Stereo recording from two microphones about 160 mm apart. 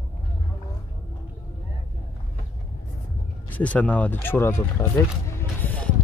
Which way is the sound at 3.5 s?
10° left (ahead or behind).